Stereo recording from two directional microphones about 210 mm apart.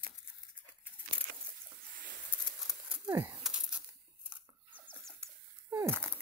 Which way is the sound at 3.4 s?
5° right (ahead or behind).